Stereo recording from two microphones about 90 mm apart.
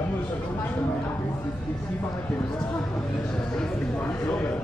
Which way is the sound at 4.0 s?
15° left (ahead or behind).